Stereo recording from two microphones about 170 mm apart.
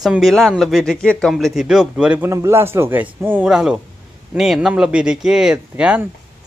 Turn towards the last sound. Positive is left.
turn(degrees=-10)  # may be behind; listen again after turning